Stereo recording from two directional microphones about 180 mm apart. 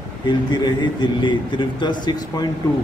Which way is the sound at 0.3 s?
25° left (ahead or behind).